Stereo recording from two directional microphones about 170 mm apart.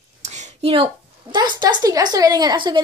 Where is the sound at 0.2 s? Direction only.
45° right (ahead or behind).